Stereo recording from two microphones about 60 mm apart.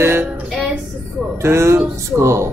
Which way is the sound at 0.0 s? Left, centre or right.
Right.